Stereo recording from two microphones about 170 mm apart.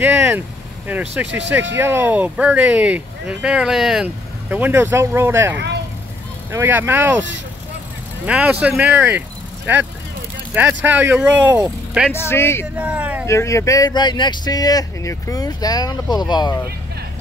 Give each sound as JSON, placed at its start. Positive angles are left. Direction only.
{"t": 0.0, "sound": "speech", "side_deg": -15}
{"t": 8.3, "sound": "speech", "side_deg": -5}
{"t": 10.5, "sound": "speech", "side_deg": -10}
{"t": 12.1, "sound": "speech", "side_deg": 15}
{"t": 12.7, "sound": "speech", "side_deg": -10}
{"t": 13.3, "sound": "speech", "side_deg": 15}